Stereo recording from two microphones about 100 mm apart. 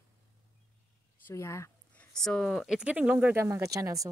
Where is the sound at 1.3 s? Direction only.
25° left (ahead or behind).